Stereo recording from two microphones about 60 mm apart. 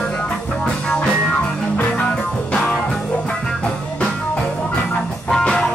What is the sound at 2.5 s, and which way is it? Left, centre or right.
Music, centre.